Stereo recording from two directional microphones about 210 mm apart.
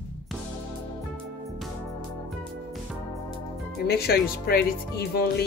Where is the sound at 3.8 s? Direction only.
50° left (ahead or behind).